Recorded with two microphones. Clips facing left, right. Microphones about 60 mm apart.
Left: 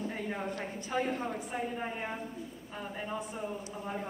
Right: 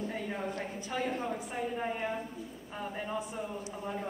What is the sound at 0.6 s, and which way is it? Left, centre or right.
Speech, left.